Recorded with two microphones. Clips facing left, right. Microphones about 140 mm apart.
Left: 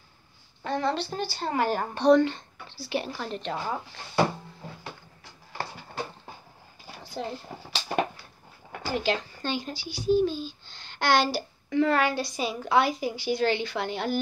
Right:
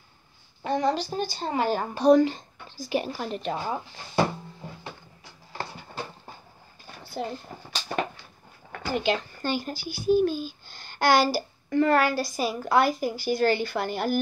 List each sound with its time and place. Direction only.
0.7 s a woman's voice: 15° right (ahead or behind)
2.0 s a woman's voice: 10° right (ahead or behind)
2.3 s speech: 45° right (ahead or behind)
3.1 s a woman's voice: 5° right (ahead or behind)
3.6 s a woman's voice: 20° right (ahead or behind)
7.0 s speech: 5° right (ahead or behind)
8.8 s speech: centre (ahead or behind)